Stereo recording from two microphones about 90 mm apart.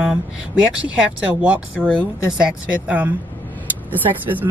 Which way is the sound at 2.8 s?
20° right (ahead or behind).